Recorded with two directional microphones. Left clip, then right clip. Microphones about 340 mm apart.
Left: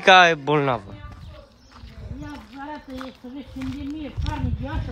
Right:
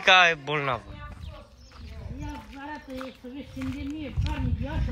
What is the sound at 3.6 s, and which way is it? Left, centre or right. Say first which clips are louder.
Speech: left 3 dB; centre.